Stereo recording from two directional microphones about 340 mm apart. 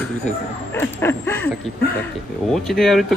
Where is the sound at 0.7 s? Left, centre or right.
Centre.